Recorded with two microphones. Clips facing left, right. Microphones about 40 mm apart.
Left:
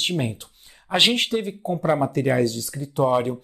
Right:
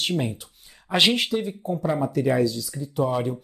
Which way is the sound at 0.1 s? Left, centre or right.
Centre.